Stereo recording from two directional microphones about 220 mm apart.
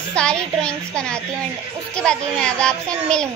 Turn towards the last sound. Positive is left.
turn(degrees=5)  # may be behind; listen again after turning